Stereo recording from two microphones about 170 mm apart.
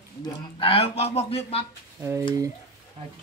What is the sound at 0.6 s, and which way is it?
Speech, 35° left (ahead or behind).